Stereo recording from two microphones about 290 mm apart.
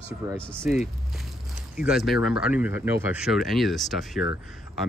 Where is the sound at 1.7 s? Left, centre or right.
Centre.